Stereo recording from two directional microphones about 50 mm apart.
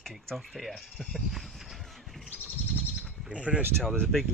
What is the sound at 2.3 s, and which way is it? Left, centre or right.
Bird, right.